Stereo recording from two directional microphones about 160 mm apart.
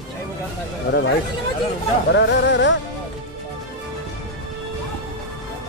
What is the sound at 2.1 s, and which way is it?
Music, 90° left.